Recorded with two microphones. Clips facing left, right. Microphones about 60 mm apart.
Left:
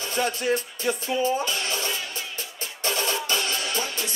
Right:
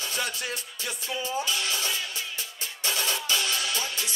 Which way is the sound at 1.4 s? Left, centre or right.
Left.